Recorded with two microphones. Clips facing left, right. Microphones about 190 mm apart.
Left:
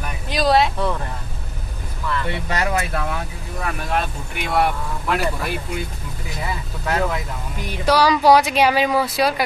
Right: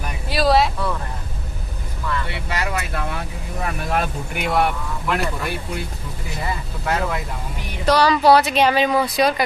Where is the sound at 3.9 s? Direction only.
Centre (ahead or behind).